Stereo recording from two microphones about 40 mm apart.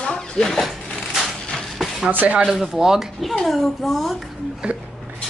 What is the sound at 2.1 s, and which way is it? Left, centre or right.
Speech, right.